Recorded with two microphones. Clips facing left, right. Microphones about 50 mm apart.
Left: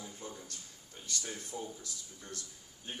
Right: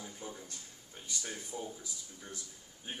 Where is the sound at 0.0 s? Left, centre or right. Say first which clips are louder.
Even; centre.